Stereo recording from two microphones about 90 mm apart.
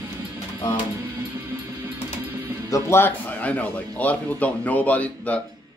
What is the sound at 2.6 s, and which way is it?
Speech, 40° left (ahead or behind).